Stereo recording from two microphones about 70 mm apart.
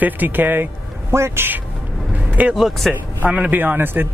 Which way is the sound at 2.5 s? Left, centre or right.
Centre.